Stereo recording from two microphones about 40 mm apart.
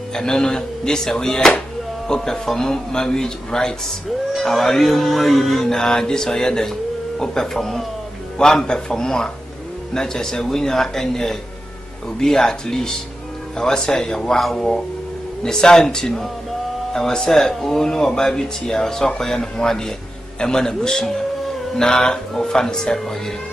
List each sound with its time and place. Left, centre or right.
0.1 s speech: centre
4.4 s speech: centre
5.7 s speech: centre
15.4 s speech: centre
21.7 s a sound: centre
22.4 s speech: centre